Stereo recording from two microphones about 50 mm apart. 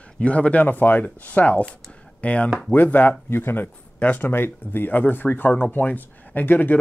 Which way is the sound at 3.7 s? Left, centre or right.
Left.